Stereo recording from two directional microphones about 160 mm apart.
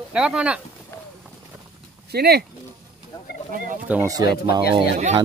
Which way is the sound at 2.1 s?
80° right.